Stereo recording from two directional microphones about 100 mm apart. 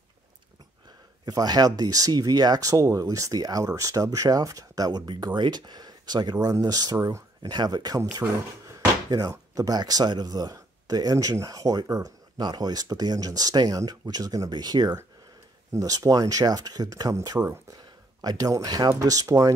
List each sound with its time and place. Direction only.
1.2 s speech: 40° right (ahead or behind)
7.0 s speech: 25° right (ahead or behind)
7.4 s speech: 40° right (ahead or behind)